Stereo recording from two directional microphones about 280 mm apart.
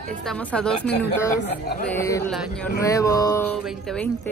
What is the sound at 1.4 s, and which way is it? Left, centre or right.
Speech, left.